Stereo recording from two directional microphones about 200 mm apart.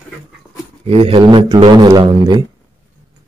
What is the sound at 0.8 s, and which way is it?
Speech, 30° right (ahead or behind).